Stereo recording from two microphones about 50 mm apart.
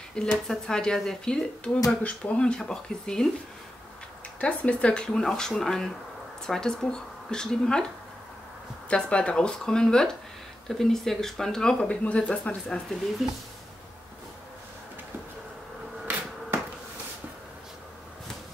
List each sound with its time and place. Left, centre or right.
0.1 s speech: centre
4.4 s speech: left
8.9 s speech: centre
11.9 s speech: left